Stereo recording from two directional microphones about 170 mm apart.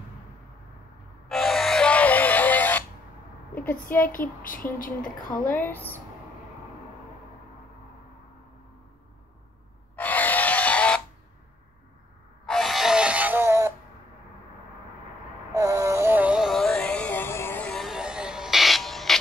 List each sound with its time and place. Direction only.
1.3 s music: centre (ahead or behind)
4.1 s child singing: 55° left (ahead or behind)
5.5 s a woman's voice: 10° left (ahead or behind)
9.9 s pig: 10° left (ahead or behind)
12.4 s music: centre (ahead or behind); by 13.7 s 15° right (ahead or behind)
15.5 s music: 20° right (ahead or behind); by 19.1 s centre (ahead or behind)